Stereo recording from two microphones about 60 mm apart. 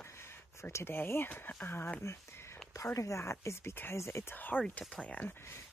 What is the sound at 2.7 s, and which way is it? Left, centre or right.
Speech, left.